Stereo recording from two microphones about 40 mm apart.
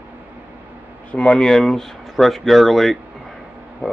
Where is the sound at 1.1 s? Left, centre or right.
Left.